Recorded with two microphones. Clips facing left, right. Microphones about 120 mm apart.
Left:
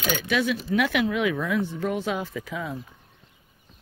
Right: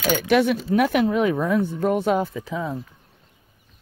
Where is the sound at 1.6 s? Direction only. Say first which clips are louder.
Right 6 dB; 50° right (ahead or behind).